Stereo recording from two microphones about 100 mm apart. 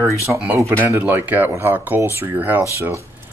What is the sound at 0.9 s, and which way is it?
Speech, 15° right (ahead or behind).